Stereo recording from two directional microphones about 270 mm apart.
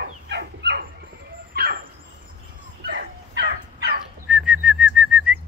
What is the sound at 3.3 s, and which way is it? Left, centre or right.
Fowl, right.